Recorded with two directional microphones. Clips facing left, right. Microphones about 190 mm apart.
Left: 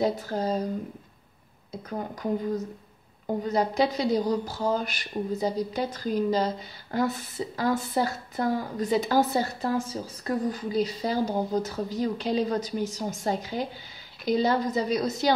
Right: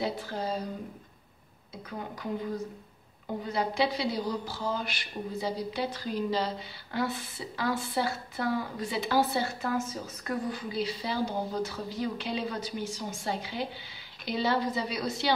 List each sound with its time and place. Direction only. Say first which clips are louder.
0.0 s speech: left 6 dB; 40° left (ahead or behind)
1.9 s speech: left 6 dB; 40° left (ahead or behind)